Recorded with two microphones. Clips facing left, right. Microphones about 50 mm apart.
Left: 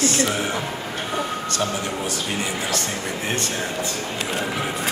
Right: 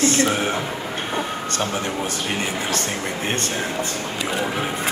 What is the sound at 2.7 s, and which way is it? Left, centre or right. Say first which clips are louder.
Speech: right 1 dB; right.